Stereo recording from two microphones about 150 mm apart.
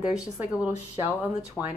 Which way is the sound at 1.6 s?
15° left (ahead or behind).